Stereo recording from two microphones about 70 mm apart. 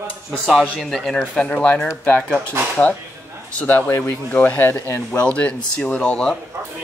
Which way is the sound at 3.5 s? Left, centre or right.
Left.